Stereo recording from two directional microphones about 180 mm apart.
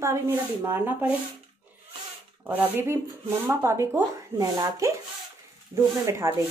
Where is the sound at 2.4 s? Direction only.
10° right (ahead or behind).